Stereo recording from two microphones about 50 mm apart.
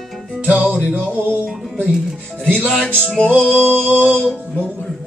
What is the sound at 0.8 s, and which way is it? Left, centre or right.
Speech, right.